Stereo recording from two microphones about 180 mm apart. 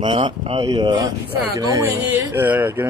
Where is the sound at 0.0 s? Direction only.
30° right (ahead or behind).